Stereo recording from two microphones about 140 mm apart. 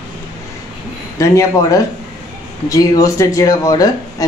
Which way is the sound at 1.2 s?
25° left (ahead or behind).